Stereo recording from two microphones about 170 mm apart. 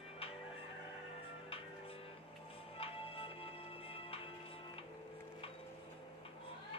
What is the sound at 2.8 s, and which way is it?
Music, 35° left (ahead or behind).